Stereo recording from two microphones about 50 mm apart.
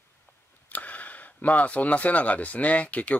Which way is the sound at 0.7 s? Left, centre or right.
Left.